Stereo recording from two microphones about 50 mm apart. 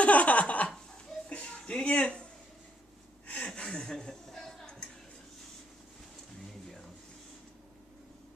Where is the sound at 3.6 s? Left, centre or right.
Centre.